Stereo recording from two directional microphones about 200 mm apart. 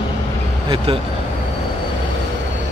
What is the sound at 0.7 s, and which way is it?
Speech, 25° right (ahead or behind).